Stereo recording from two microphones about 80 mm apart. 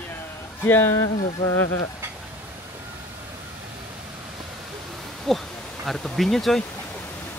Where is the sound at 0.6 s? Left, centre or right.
Left.